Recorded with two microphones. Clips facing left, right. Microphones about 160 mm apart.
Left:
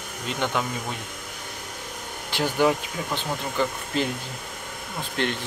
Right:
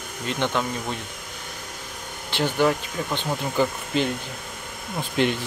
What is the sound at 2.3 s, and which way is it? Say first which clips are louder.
Speech: even; 10° left (ahead or behind).